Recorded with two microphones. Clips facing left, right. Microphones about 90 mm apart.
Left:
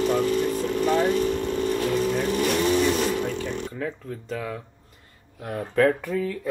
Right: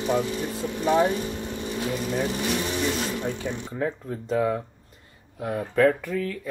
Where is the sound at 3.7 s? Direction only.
20° right (ahead or behind).